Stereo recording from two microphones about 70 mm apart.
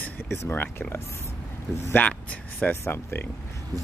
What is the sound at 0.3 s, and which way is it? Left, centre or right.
Speech, left.